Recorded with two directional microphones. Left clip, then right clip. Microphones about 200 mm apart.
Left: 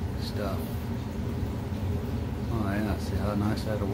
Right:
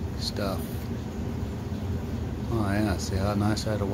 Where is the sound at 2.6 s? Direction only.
45° right (ahead or behind).